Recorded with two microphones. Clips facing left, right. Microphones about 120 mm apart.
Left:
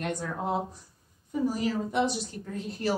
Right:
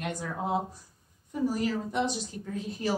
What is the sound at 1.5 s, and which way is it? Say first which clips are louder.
Speech: left 1 dB; 10° left (ahead or behind).